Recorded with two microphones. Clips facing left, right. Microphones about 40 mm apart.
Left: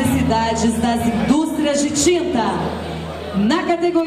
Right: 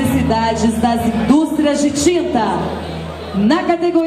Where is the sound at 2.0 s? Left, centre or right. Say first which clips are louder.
Even; centre.